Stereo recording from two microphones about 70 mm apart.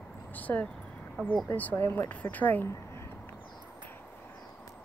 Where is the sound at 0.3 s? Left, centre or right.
Left.